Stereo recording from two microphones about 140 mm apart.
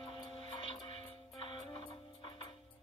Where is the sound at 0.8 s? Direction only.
40° left (ahead or behind).